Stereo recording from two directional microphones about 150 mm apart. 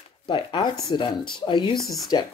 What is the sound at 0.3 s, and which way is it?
Speech, 35° left (ahead or behind).